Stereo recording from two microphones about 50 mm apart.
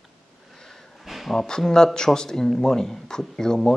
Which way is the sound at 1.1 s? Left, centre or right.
Centre.